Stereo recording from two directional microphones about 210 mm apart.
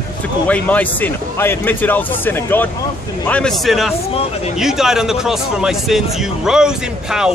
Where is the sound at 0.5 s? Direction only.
5° left (ahead or behind).